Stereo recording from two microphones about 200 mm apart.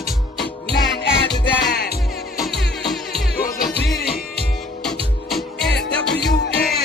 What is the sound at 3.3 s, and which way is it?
Music, 45° left (ahead or behind).